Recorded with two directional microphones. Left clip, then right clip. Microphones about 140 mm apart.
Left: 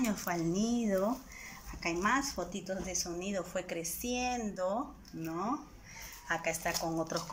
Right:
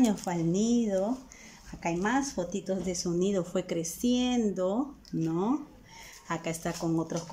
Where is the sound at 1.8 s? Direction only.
35° right (ahead or behind).